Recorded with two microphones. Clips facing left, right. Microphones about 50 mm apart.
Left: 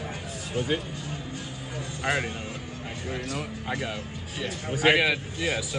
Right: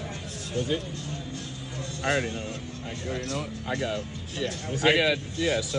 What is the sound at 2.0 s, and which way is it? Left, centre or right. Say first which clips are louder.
Speech: right 1 dB; centre.